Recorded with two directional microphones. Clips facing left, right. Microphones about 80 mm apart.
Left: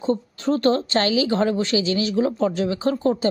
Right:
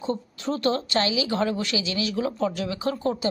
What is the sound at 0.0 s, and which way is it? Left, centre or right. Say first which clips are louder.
A woman's voice: left 6 dB; left.